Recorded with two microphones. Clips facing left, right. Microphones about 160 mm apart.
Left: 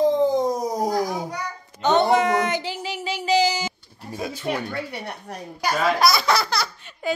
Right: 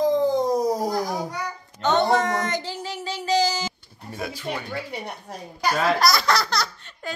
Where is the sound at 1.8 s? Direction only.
15° left (ahead or behind).